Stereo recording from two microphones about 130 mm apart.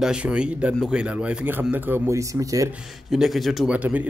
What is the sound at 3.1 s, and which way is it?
Speech, centre (ahead or behind).